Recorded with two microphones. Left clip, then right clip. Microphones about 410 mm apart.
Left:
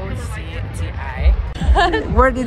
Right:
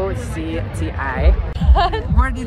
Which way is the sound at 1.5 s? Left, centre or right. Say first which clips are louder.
Left 3 dB; right.